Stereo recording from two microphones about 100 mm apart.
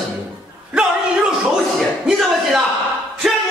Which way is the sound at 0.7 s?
10° right (ahead or behind).